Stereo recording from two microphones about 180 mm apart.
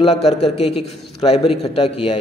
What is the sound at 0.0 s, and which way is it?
A man's voice, 35° left (ahead or behind).